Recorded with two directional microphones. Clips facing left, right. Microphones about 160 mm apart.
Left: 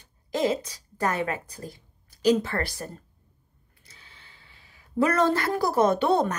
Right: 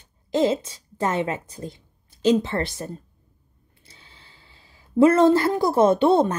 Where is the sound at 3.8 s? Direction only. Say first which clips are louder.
Right 2 dB; 30° right (ahead or behind).